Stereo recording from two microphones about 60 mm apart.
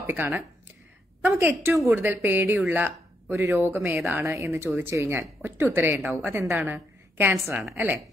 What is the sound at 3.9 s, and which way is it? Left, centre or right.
Speech, right.